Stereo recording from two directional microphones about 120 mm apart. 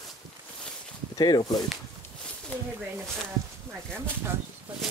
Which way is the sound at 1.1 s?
35° left (ahead or behind).